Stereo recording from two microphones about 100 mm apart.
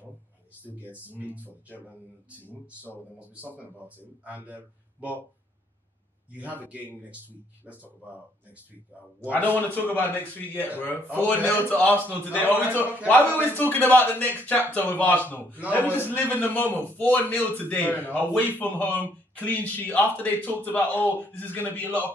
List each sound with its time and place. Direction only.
0.7 s a man's voice: 15° right (ahead or behind)
6.3 s a man's voice: 15° right (ahead or behind)
9.7 s a man's voice: 20° left (ahead or behind)